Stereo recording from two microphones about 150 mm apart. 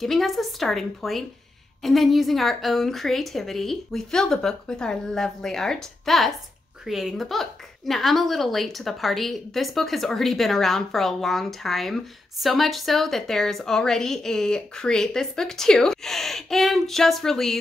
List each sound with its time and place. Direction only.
0.0 s a woman's voice: centre (ahead or behind)